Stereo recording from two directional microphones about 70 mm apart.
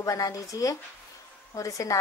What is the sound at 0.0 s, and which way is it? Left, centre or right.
Speech, left.